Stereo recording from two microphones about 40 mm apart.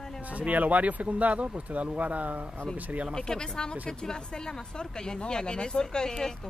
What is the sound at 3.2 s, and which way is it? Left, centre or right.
Speech, centre.